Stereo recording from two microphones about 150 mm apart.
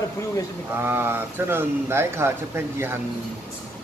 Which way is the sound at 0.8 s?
15° right (ahead or behind).